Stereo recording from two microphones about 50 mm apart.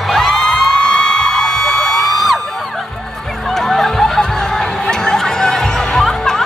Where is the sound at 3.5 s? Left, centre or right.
Centre.